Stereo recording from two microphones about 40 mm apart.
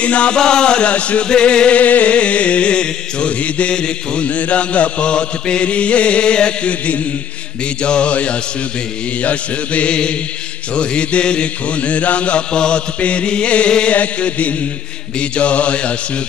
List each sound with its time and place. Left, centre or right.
0.0 s chant: left
1.8 s music: left
4.3 s chant: left
9.2 s music: left
10.7 s chant: left
13.9 s music: left
15.1 s chant: left